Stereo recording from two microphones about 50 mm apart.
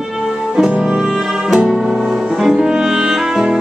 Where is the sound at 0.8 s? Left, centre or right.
Centre.